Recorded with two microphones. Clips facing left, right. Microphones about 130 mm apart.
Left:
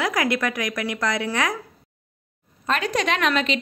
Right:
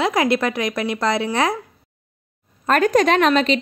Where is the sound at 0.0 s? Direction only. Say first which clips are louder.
Right 5 dB; 25° right (ahead or behind).